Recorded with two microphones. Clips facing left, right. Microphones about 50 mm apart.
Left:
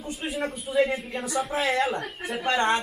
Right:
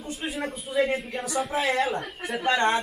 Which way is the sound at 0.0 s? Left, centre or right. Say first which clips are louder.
Left 1 dB; centre.